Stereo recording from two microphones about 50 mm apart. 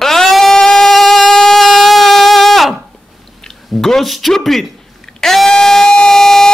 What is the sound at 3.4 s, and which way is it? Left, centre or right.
Speech, centre.